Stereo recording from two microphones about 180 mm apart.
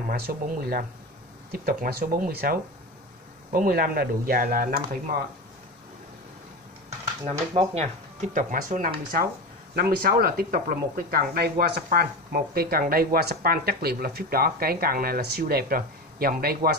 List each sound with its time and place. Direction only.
0.1 s speech: 60° right (ahead or behind)
7.2 s speech: 35° right (ahead or behind); by 16.7 s 55° right (ahead or behind)